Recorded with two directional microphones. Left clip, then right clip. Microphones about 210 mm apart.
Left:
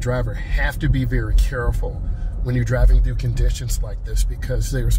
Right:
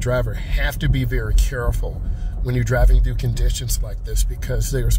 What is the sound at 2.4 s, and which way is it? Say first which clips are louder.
Speech: right 2 dB; 20° right (ahead or behind).